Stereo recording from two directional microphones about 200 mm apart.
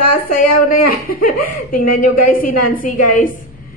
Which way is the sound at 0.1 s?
45° left (ahead or behind).